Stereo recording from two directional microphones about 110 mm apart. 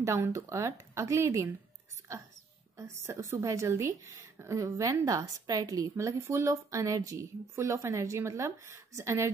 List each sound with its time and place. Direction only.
0.0 s a woman's voice: 25° right (ahead or behind)
2.8 s a woman's voice: 25° right (ahead or behind)